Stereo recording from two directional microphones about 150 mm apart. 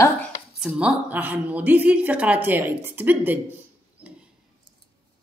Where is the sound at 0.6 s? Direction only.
10° right (ahead or behind).